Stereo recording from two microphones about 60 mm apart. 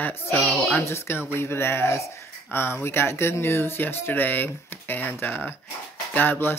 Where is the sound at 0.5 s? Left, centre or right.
Left.